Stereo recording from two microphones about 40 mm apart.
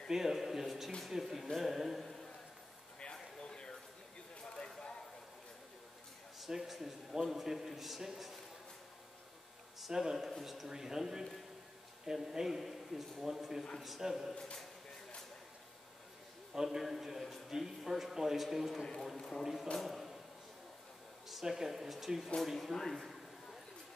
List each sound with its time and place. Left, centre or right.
0.1 s a man's voice: centre
3.2 s a sound: left
6.4 s a man's voice: centre
9.8 s a man's voice: centre
16.5 s a man's voice: centre
19.1 s speech: centre
19.4 s a man's voice: centre
19.8 s a sound: centre
21.3 s a man's voice: centre
22.9 s a sound: centre